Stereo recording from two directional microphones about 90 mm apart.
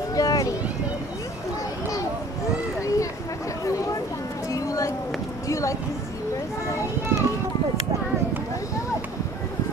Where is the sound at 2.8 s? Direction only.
35° left (ahead or behind).